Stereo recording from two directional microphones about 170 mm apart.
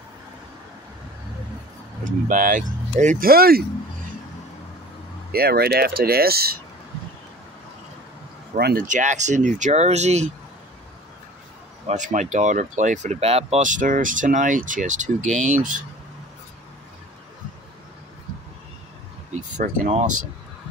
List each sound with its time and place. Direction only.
2.0 s speech: 50° right (ahead or behind)
5.3 s speech: 65° right (ahead or behind)
8.5 s speech: 70° right (ahead or behind)
8.8 s speech: 45° right (ahead or behind)
11.9 s speech: 45° right (ahead or behind)
19.3 s a sound: 50° right (ahead or behind)